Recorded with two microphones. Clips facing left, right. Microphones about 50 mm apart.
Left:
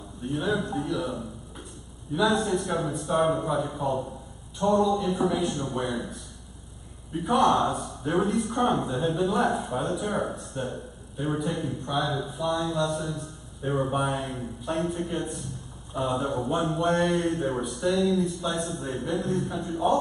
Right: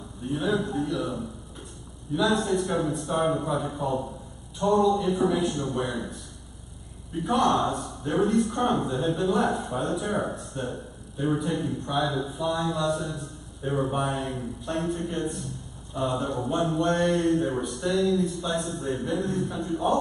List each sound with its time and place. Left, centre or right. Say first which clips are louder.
0.2 s speech: right 1 dB; centre
16.0 s a man's voice: even; centre
16.3 s speech: even; centre